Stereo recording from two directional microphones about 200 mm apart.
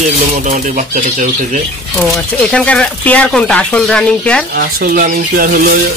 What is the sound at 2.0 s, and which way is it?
Speech, 5° left (ahead or behind).